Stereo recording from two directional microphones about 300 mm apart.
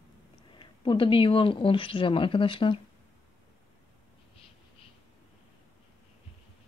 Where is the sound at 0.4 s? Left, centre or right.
Centre.